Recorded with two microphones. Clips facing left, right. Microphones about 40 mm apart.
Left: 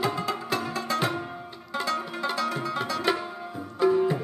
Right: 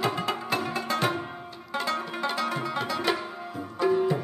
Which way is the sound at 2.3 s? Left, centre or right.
Right.